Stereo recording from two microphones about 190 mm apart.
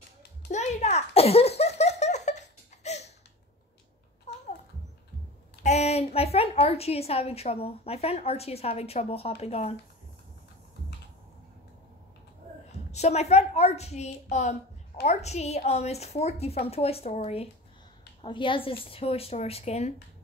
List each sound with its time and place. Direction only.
0.5 s a sound: 35° left (ahead or behind)
4.3 s babbling: 35° left (ahead or behind)
5.6 s a woman's voice: 35° left (ahead or behind)
12.9 s a woman's voice: 35° left (ahead or behind)